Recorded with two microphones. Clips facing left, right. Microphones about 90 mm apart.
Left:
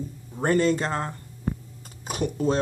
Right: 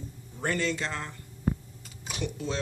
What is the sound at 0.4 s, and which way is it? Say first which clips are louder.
Speech: left 8 dB; 40° left (ahead or behind).